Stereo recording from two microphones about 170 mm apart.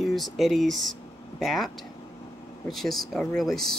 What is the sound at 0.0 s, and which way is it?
Speech, centre (ahead or behind).